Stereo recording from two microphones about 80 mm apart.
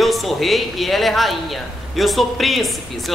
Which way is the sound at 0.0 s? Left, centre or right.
Centre.